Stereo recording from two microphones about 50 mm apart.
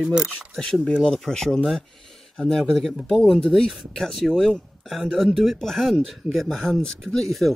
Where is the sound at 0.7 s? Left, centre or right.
Centre.